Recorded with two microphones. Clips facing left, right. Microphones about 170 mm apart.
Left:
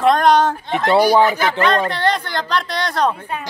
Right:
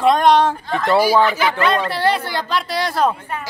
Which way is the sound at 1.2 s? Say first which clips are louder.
Left 1 dB; 45° left (ahead or behind).